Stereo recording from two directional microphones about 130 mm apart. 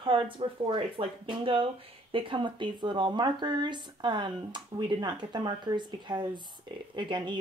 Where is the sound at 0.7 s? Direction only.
40° right (ahead or behind).